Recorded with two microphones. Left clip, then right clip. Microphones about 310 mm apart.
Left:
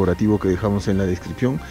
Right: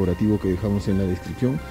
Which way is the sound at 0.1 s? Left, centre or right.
Centre.